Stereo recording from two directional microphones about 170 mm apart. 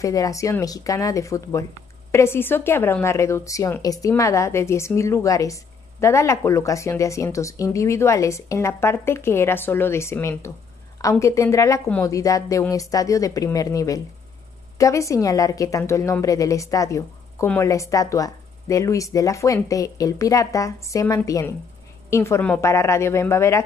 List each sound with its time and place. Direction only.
0.0 s a woman's voice: 20° left (ahead or behind)